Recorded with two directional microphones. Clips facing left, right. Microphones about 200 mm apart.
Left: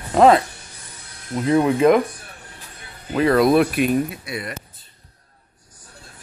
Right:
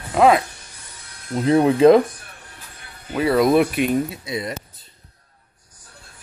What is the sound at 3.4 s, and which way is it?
Speech, 20° right (ahead or behind).